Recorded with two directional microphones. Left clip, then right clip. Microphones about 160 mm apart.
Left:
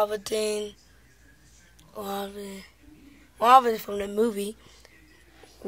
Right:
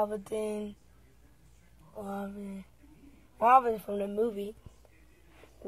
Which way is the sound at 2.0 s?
50° left (ahead or behind).